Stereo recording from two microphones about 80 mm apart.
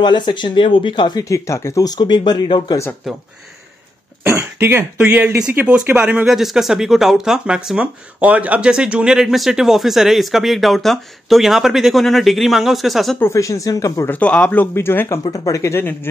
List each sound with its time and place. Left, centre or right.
0.0 s speech: left
1.3 s speech: left
1.9 s speech: left
4.2 s speech: right
6.2 s speech: centre
13.2 s speech: left
14.0 s a man's voice: centre
15.3 s speech: left